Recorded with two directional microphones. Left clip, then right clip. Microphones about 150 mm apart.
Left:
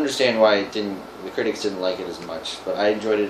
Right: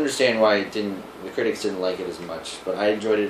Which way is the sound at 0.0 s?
5° left (ahead or behind).